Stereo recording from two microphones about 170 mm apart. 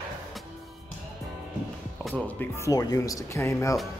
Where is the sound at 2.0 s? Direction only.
Centre (ahead or behind).